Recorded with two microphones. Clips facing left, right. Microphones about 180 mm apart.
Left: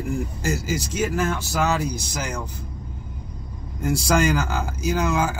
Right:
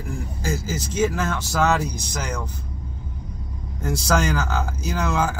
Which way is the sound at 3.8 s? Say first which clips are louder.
Left 2 dB; 10° left (ahead or behind).